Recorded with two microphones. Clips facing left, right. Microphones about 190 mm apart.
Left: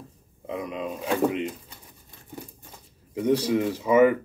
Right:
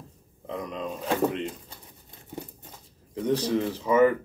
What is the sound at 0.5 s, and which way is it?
Speech, 5° left (ahead or behind).